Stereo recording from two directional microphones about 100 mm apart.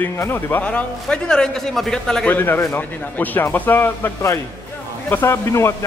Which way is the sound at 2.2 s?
20° left (ahead or behind).